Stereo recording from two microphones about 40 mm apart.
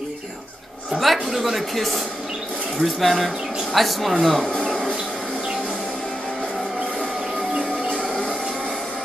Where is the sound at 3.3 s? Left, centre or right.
Centre.